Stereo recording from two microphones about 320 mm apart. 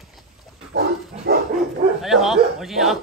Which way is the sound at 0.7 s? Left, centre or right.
Right.